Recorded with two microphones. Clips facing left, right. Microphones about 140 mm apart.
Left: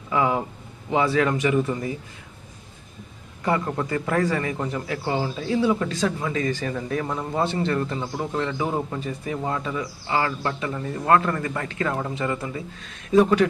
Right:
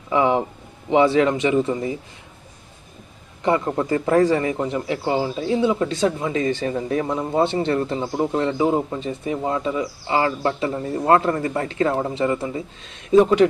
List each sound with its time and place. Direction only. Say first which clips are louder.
0.1 s a man's voice: right 4 dB; 25° right (ahead or behind)
3.4 s a man's voice: right 4 dB; 25° right (ahead or behind)